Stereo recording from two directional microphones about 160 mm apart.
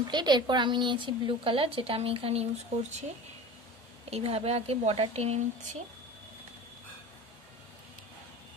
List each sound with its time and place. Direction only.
0.1 s a woman's voice: 30° right (ahead or behind); by 3.1 s 45° right (ahead or behind)
4.1 s a woman's voice: 40° right (ahead or behind)